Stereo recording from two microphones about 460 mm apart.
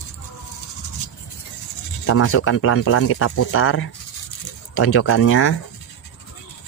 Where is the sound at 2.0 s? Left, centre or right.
Left.